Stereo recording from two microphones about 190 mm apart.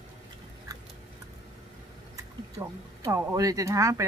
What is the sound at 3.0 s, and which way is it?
Speech, 15° right (ahead or behind).